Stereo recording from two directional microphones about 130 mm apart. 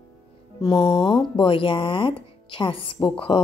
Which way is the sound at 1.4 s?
40° left (ahead or behind).